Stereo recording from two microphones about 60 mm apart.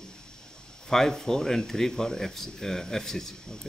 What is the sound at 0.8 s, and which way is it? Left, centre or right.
Speech, centre.